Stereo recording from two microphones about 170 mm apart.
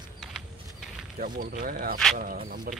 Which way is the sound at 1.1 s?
55° right (ahead or behind).